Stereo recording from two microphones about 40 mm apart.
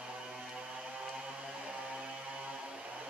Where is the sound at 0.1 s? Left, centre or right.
Centre.